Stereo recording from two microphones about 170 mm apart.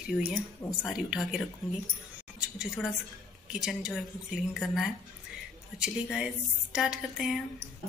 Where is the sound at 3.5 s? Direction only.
5° right (ahead or behind).